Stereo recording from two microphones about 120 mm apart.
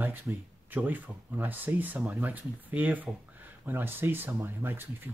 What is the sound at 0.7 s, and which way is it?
Speech, 15° right (ahead or behind).